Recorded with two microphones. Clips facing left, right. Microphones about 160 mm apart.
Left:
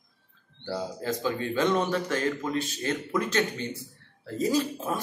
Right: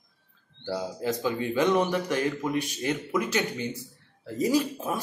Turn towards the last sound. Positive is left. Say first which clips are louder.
# right 1 dB
turn(degrees=-10)  # may be behind; listen again after turning